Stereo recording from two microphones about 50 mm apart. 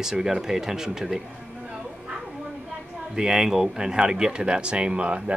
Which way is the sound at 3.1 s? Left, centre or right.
Centre.